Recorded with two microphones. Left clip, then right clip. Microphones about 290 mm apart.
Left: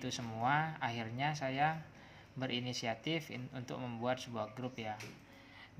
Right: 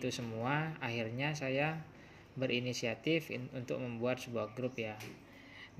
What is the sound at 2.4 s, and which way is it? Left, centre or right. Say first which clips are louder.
Speech: right 3 dB; left.